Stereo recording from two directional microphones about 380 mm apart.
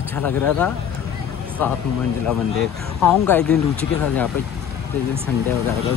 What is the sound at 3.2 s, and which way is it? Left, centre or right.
Speech, centre.